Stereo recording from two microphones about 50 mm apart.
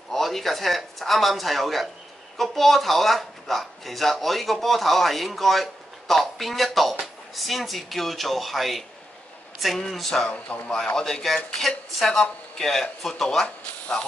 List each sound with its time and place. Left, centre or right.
0.1 s speech: centre
10.2 s speech: left
11.0 s speech: centre